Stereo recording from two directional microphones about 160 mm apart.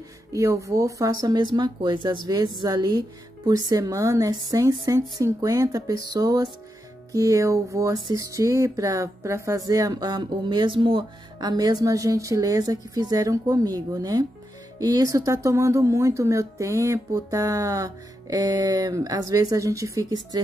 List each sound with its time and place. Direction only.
0.3 s speech: 20° right (ahead or behind)